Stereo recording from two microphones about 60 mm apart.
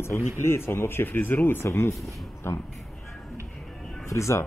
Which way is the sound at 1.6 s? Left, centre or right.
Left.